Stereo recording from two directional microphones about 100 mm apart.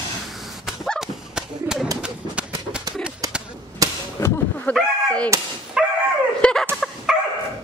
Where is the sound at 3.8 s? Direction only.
35° right (ahead or behind).